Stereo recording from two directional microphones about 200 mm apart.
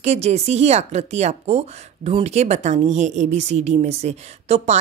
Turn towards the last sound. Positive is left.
turn(degrees=-35)  # may be behind; listen again after turning